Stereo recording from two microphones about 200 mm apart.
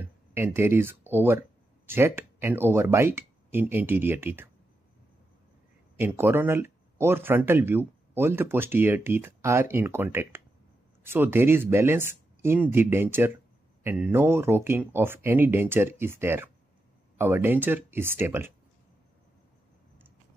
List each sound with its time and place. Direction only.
0.0 s a sound: 10° right (ahead or behind)
1.1 s speech: 10° right (ahead or behind)
5.9 s speech: 10° right (ahead or behind)